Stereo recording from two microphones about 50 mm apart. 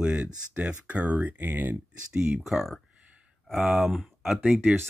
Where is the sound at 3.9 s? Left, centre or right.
Centre.